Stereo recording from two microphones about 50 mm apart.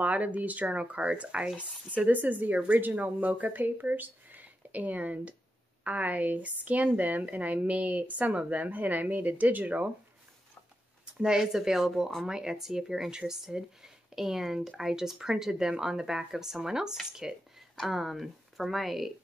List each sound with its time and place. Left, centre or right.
0.0 s speech: right
11.3 s speech: centre